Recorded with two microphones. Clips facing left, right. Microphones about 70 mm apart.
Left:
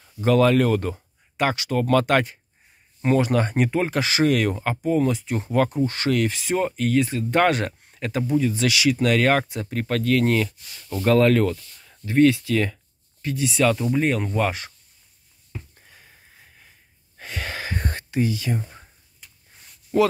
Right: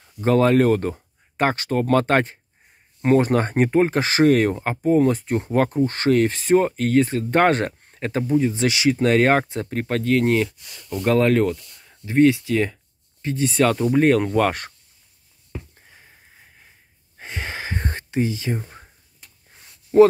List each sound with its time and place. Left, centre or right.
0.2 s speech: right
13.2 s speech: right
17.2 s a sound: right
19.9 s speech: right